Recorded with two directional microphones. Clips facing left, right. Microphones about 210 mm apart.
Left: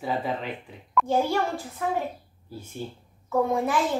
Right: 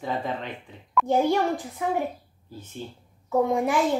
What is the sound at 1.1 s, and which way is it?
Speech, 15° right (ahead or behind).